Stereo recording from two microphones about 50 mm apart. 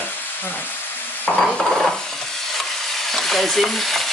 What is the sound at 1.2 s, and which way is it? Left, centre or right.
Stir, left.